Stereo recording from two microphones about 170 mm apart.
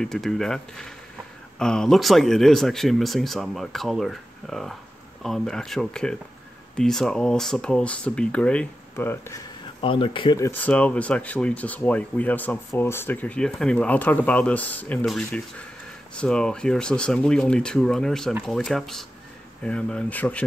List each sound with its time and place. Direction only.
0.0 s speech: centre (ahead or behind)
9.8 s speech: 30° left (ahead or behind)
10.5 s speech: 10° left (ahead or behind)